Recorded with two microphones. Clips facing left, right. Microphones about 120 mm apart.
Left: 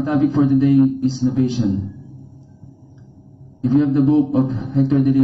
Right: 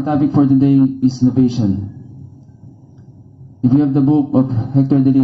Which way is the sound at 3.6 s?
35° right (ahead or behind).